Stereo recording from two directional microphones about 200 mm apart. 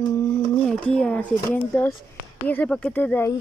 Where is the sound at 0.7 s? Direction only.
5° left (ahead or behind).